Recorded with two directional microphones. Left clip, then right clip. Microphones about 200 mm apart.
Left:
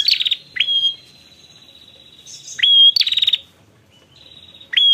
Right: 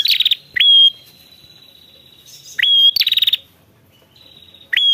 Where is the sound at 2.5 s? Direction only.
35° right (ahead or behind).